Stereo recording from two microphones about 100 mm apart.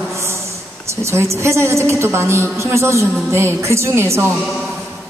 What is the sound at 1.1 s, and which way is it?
Speech, 30° right (ahead or behind).